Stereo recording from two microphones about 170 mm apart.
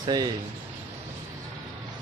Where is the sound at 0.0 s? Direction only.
20° right (ahead or behind).